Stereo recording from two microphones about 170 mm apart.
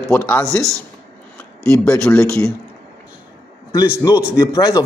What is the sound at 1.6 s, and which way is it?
Speech, 10° left (ahead or behind).